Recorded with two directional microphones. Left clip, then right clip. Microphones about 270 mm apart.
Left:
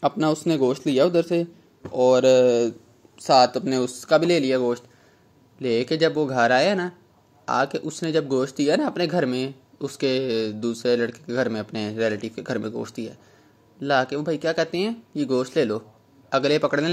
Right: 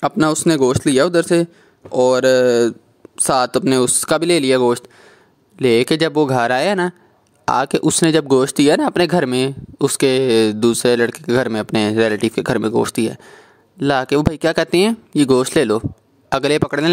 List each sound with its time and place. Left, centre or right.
0.0 s speech: right